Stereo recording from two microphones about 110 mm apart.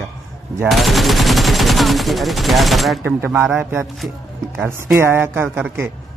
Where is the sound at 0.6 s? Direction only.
Centre (ahead or behind).